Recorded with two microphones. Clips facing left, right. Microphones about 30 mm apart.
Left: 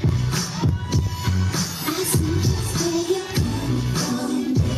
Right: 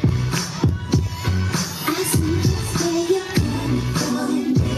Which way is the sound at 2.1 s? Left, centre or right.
Centre.